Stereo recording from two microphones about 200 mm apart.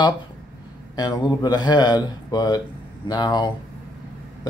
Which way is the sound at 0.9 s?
20° left (ahead or behind).